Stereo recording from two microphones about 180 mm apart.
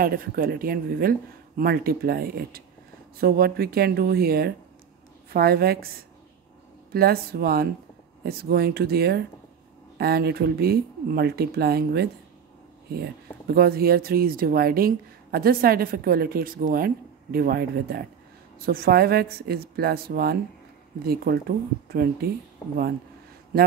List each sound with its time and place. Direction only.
0.0 s speech: 55° right (ahead or behind)
6.9 s speech: 60° right (ahead or behind)